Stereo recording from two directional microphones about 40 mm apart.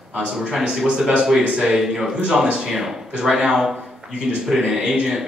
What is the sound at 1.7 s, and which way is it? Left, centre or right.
Speech, centre.